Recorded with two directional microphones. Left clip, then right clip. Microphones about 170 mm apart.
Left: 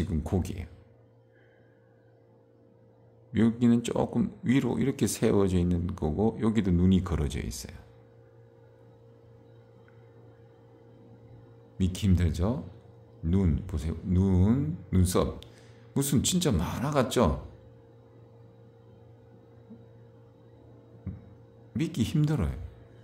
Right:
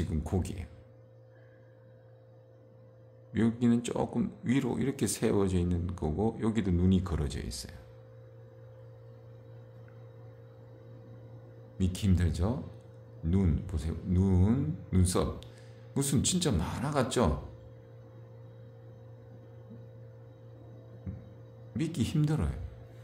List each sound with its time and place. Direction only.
0.0 s speech: 20° left (ahead or behind)
3.3 s speech: 25° left (ahead or behind)
11.8 s speech: 20° left (ahead or behind)
21.1 s a sound: 15° left (ahead or behind)
21.7 s speech: 25° left (ahead or behind)